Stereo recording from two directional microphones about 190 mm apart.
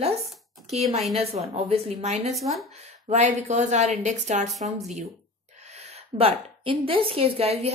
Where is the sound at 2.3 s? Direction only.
Centre (ahead or behind).